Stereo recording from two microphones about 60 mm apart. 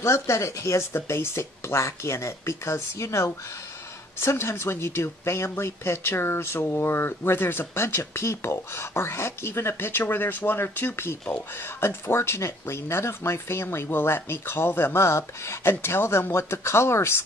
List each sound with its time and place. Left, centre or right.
0.0 s speech: left